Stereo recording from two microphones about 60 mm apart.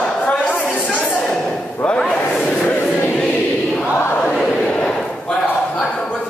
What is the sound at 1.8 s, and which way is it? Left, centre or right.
Speech, centre.